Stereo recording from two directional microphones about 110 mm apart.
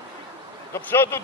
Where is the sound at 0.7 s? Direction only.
20° left (ahead or behind).